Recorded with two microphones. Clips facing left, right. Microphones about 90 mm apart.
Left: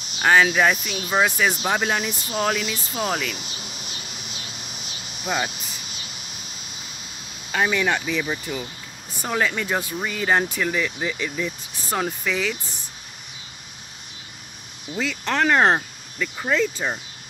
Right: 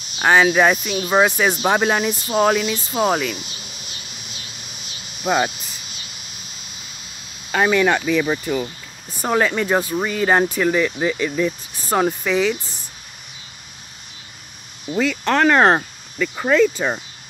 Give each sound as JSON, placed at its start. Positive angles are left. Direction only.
{"t": 0.2, "sound": "speech", "side_deg": -20}
{"t": 5.2, "sound": "cricket", "side_deg": -55}
{"t": 7.5, "sound": "speech", "side_deg": -60}
{"t": 9.2, "sound": "speech", "side_deg": -45}
{"t": 11.9, "sound": "speech", "side_deg": -35}
{"t": 15.0, "sound": "speech", "side_deg": -60}